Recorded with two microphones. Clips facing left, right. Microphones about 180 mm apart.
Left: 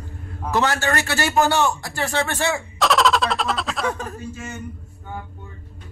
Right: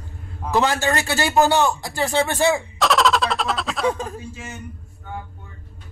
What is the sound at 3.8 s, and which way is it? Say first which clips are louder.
Speech: right 6 dB; 25° right (ahead or behind).